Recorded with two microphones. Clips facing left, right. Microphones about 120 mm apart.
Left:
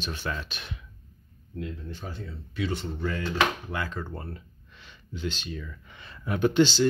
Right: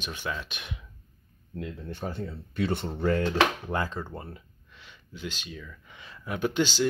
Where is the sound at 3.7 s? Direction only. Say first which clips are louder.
Right 3 dB; 35° right (ahead or behind).